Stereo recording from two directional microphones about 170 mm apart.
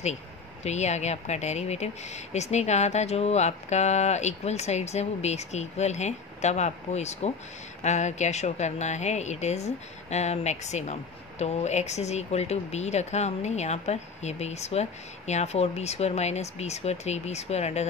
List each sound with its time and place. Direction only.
0.7 s speech: 40° left (ahead or behind)